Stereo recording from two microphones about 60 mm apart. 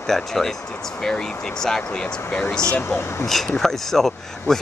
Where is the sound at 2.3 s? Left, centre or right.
Centre.